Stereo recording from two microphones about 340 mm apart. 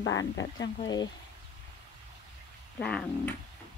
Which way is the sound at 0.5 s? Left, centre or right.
Centre.